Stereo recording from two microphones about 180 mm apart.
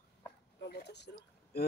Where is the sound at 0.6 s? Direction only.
65° left (ahead or behind).